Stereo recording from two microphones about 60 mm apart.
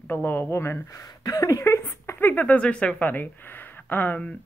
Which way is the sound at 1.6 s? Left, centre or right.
Left.